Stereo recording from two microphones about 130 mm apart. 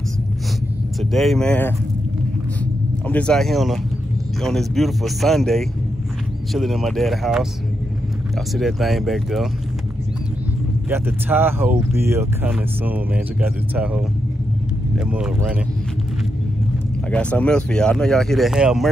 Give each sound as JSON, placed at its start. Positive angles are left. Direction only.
{"t": 1.1, "sound": "speech", "side_deg": 0}
{"t": 8.5, "sound": "speech", "side_deg": 0}
{"t": 10.9, "sound": "speech", "side_deg": -15}
{"t": 17.1, "sound": "speech", "side_deg": 10}